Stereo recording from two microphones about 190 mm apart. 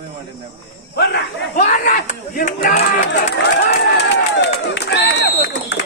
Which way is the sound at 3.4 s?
65° left (ahead or behind).